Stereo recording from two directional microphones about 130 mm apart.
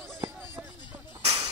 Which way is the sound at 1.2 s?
50° right (ahead or behind).